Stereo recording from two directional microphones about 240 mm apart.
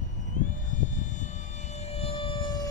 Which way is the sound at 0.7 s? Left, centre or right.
Left.